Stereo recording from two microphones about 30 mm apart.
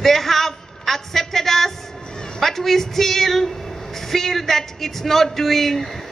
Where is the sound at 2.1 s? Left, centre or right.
Left.